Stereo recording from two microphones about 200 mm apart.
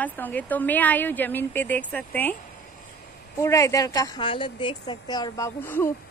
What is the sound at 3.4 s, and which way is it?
A woman's voice, 15° left (ahead or behind).